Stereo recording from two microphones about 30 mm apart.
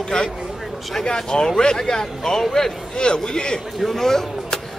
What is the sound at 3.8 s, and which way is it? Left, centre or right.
Speech, centre.